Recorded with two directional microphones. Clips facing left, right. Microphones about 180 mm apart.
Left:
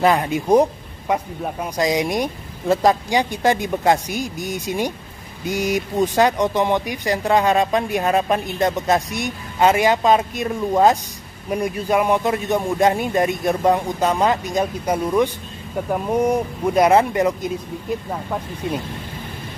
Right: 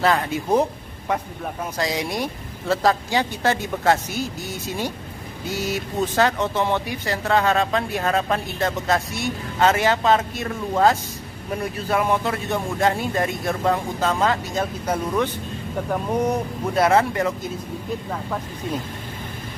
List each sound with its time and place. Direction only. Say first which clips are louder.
0.0 s speech: left 3 dB; 15° left (ahead or behind)